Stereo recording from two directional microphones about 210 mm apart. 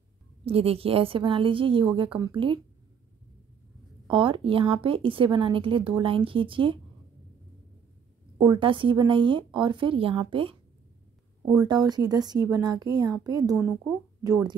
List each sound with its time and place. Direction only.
0.5 s a woman's voice: 30° right (ahead or behind)
4.1 s a woman's voice: 25° right (ahead or behind)
8.4 s a woman's voice: 25° right (ahead or behind)
13.6 s speech: 5° right (ahead or behind)